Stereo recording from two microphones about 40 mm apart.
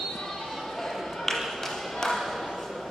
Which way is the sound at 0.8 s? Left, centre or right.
Centre.